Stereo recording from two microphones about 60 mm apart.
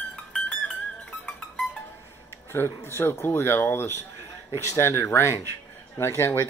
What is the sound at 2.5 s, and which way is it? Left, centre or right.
Speech, left.